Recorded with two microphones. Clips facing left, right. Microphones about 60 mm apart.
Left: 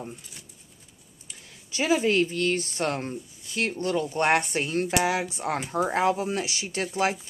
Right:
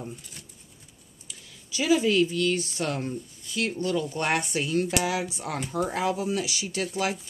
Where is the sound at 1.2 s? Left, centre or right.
Left.